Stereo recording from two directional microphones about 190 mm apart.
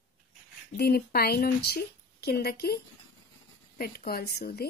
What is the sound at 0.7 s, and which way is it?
Speech, 55° left (ahead or behind).